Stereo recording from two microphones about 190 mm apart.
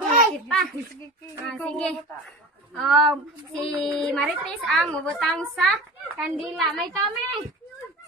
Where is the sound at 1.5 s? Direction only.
5° left (ahead or behind).